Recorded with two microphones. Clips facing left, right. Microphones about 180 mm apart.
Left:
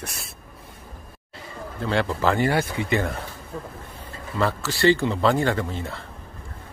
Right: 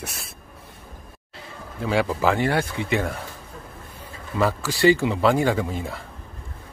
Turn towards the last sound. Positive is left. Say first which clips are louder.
# right 2 dB
turn(degrees=-10)  # may be behind; listen again after turning